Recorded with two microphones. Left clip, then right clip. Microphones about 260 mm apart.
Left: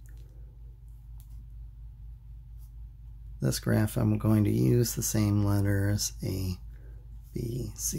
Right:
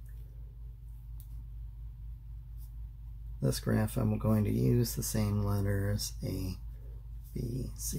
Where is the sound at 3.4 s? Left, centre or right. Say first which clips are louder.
Left 3 dB; left.